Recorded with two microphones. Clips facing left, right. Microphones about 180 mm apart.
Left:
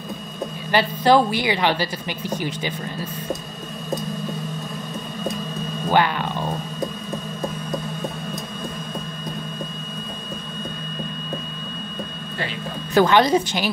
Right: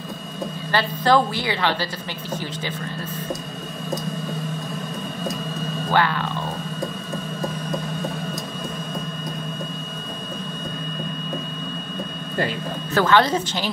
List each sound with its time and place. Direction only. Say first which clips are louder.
0.7 s a woman's voice: left 3 dB; 15° left (ahead or behind)
5.9 s speech: left 2 dB; 15° left (ahead or behind)
12.9 s a woman's voice: left 3 dB; 15° left (ahead or behind)